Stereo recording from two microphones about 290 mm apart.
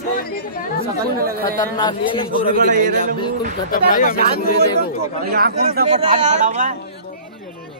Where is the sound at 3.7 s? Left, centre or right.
Left.